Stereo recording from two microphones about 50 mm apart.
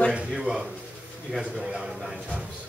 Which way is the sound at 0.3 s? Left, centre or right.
Centre.